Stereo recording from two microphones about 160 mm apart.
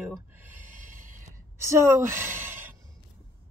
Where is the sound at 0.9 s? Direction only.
55° right (ahead or behind).